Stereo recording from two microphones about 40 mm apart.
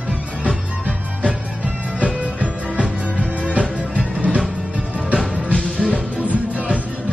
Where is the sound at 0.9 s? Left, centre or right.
Right.